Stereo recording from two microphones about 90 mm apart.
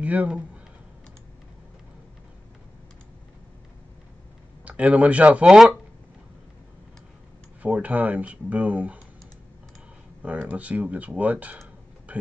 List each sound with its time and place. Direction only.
0.0 s speech: 15° right (ahead or behind)
4.6 s speech: 15° right (ahead or behind)
5.5 s speech: 5° right (ahead or behind)
7.6 s speech: 15° right (ahead or behind)
10.2 s speech: 15° right (ahead or behind)